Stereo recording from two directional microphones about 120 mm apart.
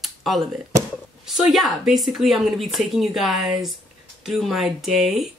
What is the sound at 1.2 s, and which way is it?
Speech, 5° right (ahead or behind).